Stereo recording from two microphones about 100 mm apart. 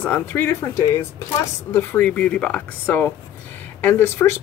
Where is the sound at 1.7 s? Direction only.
15° left (ahead or behind).